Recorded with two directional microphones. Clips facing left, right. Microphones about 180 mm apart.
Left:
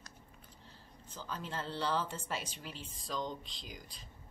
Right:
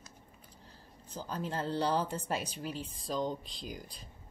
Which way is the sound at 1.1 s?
40° right (ahead or behind).